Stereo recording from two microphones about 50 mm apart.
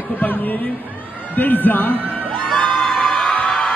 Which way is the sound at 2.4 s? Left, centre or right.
Centre.